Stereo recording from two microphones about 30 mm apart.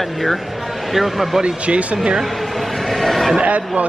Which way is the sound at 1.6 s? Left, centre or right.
Right.